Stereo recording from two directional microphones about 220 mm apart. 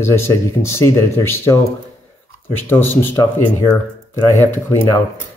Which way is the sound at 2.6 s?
10° left (ahead or behind).